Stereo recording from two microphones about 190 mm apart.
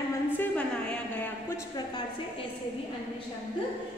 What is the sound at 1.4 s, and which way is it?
Speech, 20° left (ahead or behind).